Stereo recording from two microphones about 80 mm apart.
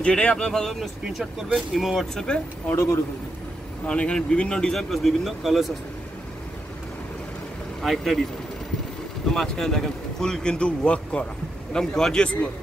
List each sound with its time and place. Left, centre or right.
0.0 s speech: centre
2.7 s a man's voice: left
3.8 s speech: centre
7.8 s speech: centre
9.3 s speech: centre